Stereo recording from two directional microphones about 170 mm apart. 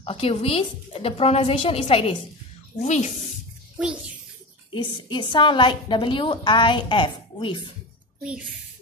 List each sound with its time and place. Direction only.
0.0 s a woman's voice: 35° left (ahead or behind)
4.7 s a woman's voice: 25° left (ahead or behind)